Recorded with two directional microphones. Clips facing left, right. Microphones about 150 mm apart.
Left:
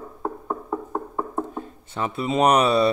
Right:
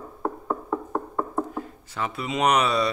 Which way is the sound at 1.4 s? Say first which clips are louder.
Even; 25° left (ahead or behind).